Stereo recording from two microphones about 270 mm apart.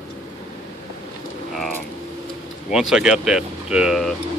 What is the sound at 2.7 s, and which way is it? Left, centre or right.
Speech, centre.